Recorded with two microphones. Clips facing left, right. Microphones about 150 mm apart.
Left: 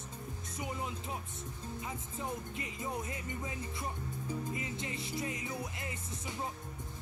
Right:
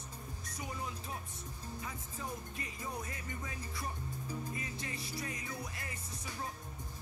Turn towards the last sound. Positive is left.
turn(degrees=20)  # may be behind; listen again after turning